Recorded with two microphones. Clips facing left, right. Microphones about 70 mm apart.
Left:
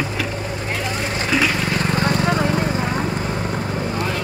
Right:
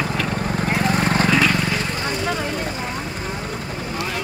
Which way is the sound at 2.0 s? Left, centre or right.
Left.